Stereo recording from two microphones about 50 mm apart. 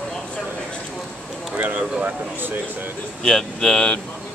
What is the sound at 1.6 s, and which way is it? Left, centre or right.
Speech, right.